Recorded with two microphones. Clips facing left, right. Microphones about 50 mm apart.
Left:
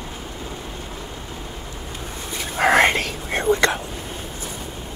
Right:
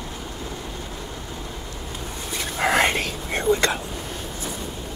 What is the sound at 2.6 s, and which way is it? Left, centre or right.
Whispering, left.